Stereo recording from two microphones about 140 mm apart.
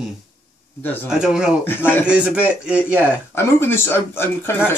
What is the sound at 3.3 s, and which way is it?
Speech, 15° left (ahead or behind).